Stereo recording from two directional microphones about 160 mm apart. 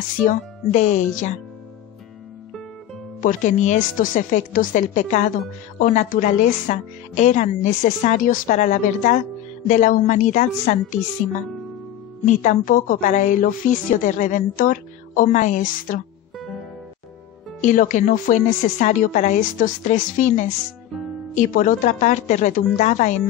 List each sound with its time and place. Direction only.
0.2 s a woman's voice: 50° left (ahead or behind)
3.2 s a woman's voice: 55° left (ahead or behind)
12.3 s a woman's voice: 50° left (ahead or behind)
17.6 s a woman's voice: 55° left (ahead or behind)